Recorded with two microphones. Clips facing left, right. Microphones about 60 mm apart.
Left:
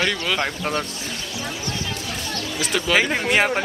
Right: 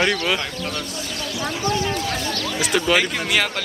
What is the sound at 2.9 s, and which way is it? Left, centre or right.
Speech, left.